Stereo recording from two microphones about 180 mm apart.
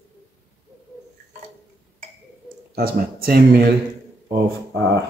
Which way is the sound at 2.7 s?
55° right (ahead or behind).